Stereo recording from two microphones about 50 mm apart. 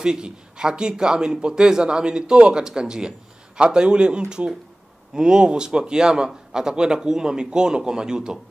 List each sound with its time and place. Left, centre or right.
0.0 s a man's voice: centre